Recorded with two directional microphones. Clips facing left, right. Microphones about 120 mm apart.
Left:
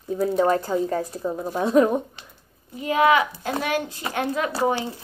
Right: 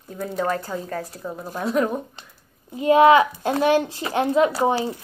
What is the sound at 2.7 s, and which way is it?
A child's voice, 30° right (ahead or behind).